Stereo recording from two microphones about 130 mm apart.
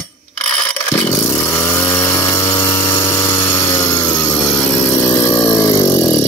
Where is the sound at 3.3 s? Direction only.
30° left (ahead or behind).